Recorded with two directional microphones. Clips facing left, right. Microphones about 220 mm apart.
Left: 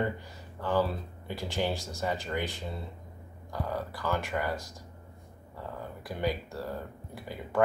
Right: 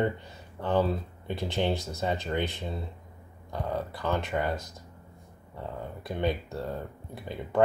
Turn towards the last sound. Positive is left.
turn(degrees=-20)  # may be behind; listen again after turning